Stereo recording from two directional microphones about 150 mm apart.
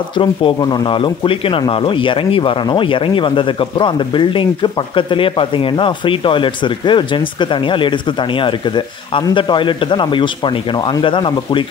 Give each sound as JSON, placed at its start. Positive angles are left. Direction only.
{"t": 0.2, "sound": "speech", "side_deg": 35}